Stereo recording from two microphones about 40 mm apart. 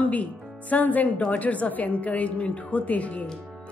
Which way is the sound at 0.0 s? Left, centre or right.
Left.